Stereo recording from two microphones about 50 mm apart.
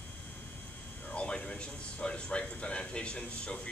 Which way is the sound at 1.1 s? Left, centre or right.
Centre.